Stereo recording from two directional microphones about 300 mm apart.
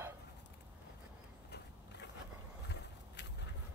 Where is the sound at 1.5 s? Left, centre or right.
Left.